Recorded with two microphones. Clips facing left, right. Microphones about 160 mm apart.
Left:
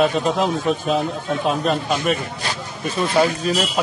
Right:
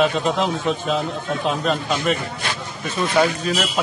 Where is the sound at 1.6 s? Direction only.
35° left (ahead or behind).